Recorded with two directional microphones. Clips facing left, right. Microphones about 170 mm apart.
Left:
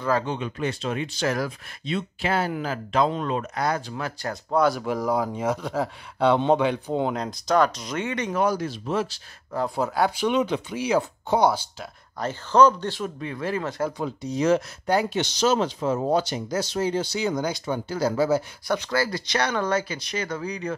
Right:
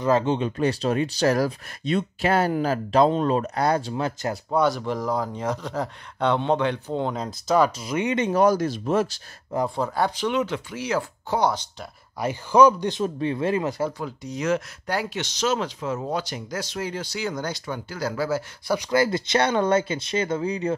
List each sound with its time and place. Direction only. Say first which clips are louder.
0.0 s speech: right 4 dB; 20° right (ahead or behind)
0.6 s speech: right 5 dB; 35° right (ahead or behind)
4.5 s speech: left 1 dB; centre (ahead or behind)
7.2 s speech: right 3 dB; 5° right (ahead or behind)
8.3 s speech: right 5 dB; 40° right (ahead or behind)
9.8 s speech: left 1 dB; 5° left (ahead or behind)
12.2 s speech: right 1 dB; 10° right (ahead or behind)
13.0 s speech: right 8 dB; 25° right (ahead or behind)
13.9 s speech: left 4 dB; 25° left (ahead or behind)
18.7 s speech: right 3 dB; 15° right (ahead or behind)